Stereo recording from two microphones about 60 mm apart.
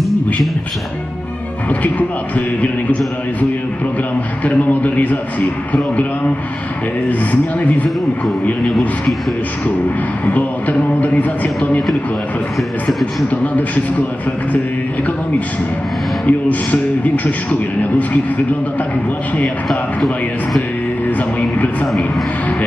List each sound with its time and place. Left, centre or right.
1.7 s a man's voice: left
4.5 s a man's voice: left
10.2 s a man's voice: left
12.8 s a man's voice: left
16.3 s a man's voice: left